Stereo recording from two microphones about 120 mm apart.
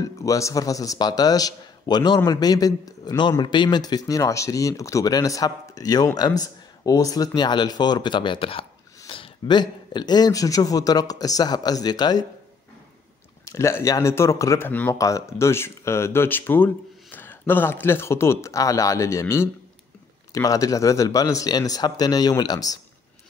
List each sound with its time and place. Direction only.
0.0 s speech: 30° left (ahead or behind)
13.5 s speech: 25° left (ahead or behind)
14.7 s speech: 15° left (ahead or behind)
15.0 s speech: 25° left (ahead or behind)